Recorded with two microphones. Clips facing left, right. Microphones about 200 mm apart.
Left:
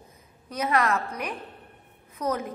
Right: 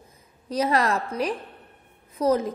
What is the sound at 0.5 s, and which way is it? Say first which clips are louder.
A woman's voice: right 2 dB; 35° right (ahead or behind).